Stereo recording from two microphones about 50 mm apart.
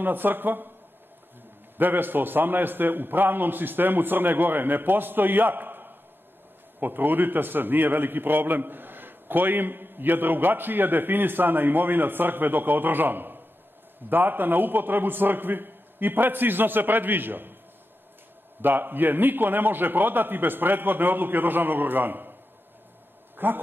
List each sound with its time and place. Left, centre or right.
0.0 s a man's voice: right
1.8 s a man's voice: right
18.6 s a man's voice: right
23.3 s a man's voice: right